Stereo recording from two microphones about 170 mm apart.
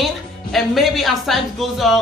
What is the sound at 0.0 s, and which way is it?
Speech, centre (ahead or behind).